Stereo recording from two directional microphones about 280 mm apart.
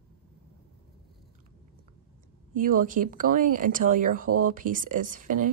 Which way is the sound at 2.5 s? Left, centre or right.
Right.